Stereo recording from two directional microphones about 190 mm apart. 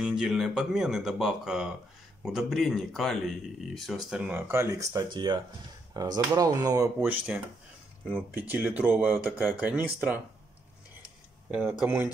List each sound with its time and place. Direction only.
0.0 s speech: 5° right (ahead or behind)
11.8 s speech: 10° right (ahead or behind)